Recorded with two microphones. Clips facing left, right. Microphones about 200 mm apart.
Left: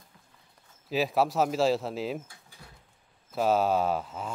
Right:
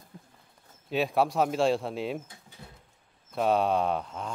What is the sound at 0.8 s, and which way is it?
Speech, centre (ahead or behind).